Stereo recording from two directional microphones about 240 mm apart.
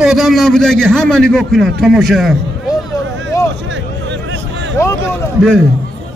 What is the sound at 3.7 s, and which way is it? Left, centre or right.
Music, right.